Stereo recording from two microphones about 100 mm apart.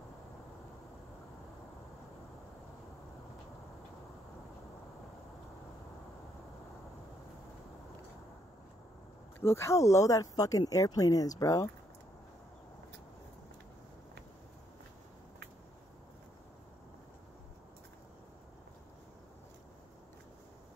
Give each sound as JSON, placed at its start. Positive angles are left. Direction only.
{"t": 9.4, "sound": "speech", "side_deg": 25}